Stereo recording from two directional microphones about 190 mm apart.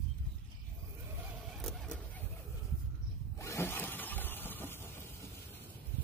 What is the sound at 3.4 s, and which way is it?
Sawing, 15° left (ahead or behind).